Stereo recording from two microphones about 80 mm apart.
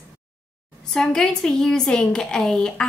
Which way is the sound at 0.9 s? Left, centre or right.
Centre.